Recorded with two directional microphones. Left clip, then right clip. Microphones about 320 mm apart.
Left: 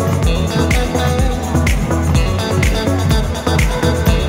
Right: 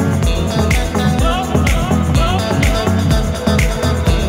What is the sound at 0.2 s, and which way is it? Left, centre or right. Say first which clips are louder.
Music: even; centre.